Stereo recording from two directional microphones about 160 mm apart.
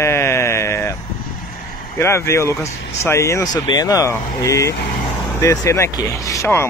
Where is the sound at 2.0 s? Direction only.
15° left (ahead or behind).